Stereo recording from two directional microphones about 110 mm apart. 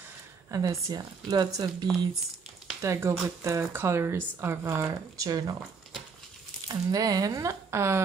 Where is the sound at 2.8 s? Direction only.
25° right (ahead or behind).